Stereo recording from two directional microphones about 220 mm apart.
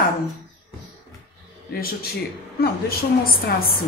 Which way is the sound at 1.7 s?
45° left (ahead or behind).